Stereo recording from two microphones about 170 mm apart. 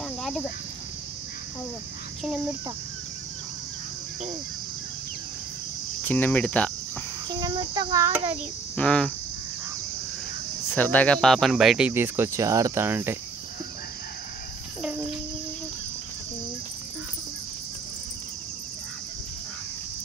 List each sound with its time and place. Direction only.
0.2 s cricket: centre (ahead or behind)
6.0 s cricket: 10° left (ahead or behind)
7.2 s cricket: 25° right (ahead or behind)
8.7 s speech: 5° left (ahead or behind)
10.7 s speech: 10° left (ahead or behind); by 13.2 s 15° right (ahead or behind)